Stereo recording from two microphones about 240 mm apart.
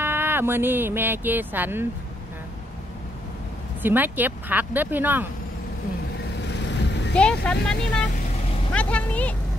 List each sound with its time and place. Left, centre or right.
0.0 s speech: centre
3.8 s speech: centre
6.7 s vehicle: left
7.4 s speech: centre